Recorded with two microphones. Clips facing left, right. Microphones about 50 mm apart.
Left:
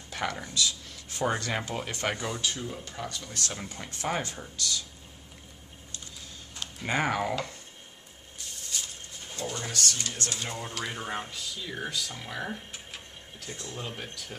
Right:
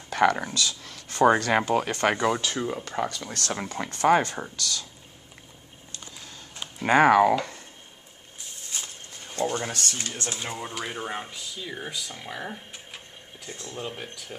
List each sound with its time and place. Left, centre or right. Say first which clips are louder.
0.1 s speech: right 11 dB; right
6.8 s speech: right 11 dB; right
8.7 s a sound: right 1 dB; right
9.3 s speech: right 8 dB; right
9.7 s speech: right 1 dB; right; by 14.3 s centre